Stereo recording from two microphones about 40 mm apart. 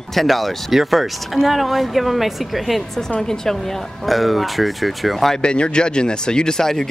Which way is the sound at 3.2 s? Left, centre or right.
Centre.